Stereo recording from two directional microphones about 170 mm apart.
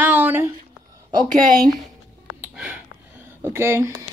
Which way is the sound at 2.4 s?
10° right (ahead or behind).